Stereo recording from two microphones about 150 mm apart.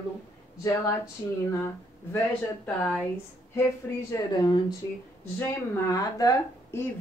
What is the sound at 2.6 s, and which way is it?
Speech, 10° left (ahead or behind).